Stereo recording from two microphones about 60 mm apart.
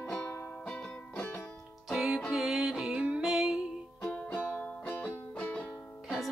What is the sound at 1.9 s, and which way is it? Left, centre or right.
Music, centre.